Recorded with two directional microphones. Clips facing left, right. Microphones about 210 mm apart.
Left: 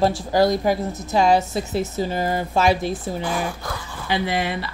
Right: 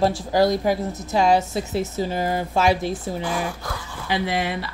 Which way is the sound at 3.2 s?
40° left (ahead or behind).